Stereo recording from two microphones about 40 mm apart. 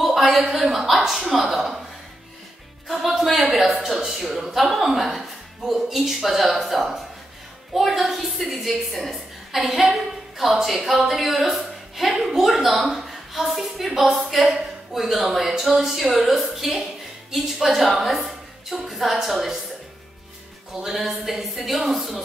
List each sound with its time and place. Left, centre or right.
0.0 s a woman's voice: centre
2.9 s a woman's voice: centre
20.7 s a woman's voice: centre